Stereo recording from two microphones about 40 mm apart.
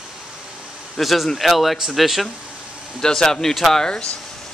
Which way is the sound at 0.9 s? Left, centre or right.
Centre.